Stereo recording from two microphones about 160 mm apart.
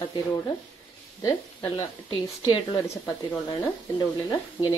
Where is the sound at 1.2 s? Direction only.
20° left (ahead or behind).